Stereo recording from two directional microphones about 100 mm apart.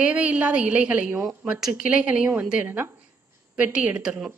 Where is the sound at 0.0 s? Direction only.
15° right (ahead or behind).